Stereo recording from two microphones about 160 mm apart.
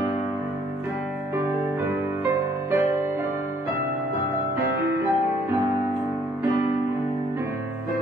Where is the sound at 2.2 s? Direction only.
15° right (ahead or behind).